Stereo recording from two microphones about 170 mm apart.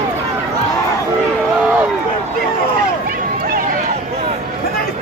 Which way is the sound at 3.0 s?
60° right (ahead or behind).